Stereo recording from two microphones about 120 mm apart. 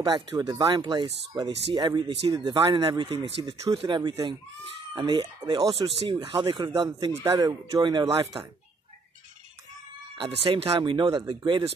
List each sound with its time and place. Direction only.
0.0 s speech: 45° right (ahead or behind)
6.2 s speech: 45° right (ahead or behind)
7.2 s speech: 30° right (ahead or behind)
10.1 s speech: 50° right (ahead or behind)